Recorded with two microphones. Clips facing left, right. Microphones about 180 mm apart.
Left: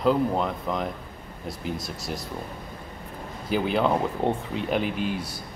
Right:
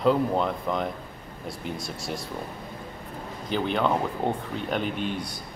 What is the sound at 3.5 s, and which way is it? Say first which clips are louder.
Speech: left 2 dB; 5° left (ahead or behind).